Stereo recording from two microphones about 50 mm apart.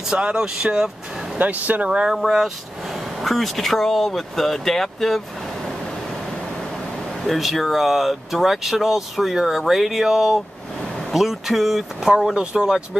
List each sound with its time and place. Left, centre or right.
0.1 s speech: centre
1.4 s speech: right
1.9 s speech: centre
2.1 s speech: centre
7.2 s speech: centre